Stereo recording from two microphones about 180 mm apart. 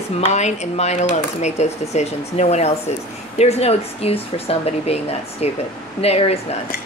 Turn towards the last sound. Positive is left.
turn(degrees=35)  # may be behind; listen again after turning